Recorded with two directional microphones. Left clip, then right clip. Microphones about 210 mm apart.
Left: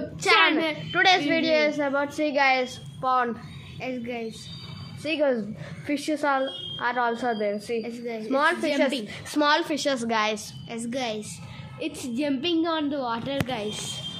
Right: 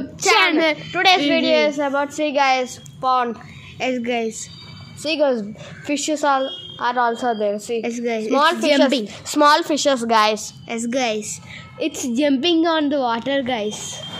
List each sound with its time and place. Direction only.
0.4 s a sound: 40° right (ahead or behind)
0.9 s a woman's voice: 10° right (ahead or behind)
3.8 s a woman's voice: 40° right (ahead or behind)
5.0 s a woman's voice: 20° right (ahead or behind)
7.0 s a woman's voice: centre (ahead or behind)
7.3 s speech: 20° right (ahead or behind)
7.8 s a woman's voice: 40° right (ahead or behind)
8.3 s a woman's voice: 10° right (ahead or behind)
8.5 s a woman's voice: 40° right (ahead or behind)
9.3 s a woman's voice: 15° right (ahead or behind)
10.7 s a woman's voice: 40° right (ahead or behind)